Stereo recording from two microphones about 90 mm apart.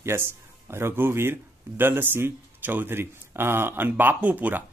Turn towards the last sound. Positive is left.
turn(degrees=-15)  # may be behind; listen again after turning